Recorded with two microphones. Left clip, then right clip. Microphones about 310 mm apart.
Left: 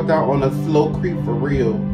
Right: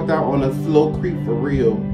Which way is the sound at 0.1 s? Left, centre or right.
Centre.